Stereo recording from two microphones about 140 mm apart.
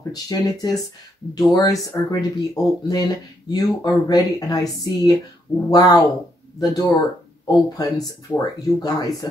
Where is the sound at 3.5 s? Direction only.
30° left (ahead or behind).